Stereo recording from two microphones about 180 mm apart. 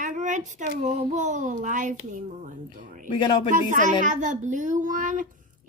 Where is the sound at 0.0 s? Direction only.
45° right (ahead or behind).